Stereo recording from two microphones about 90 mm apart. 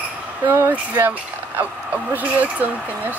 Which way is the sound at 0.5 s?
30° right (ahead or behind).